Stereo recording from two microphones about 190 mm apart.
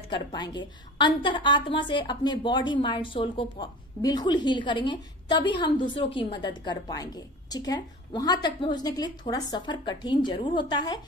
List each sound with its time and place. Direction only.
0.1 s a woman's voice: 20° left (ahead or behind)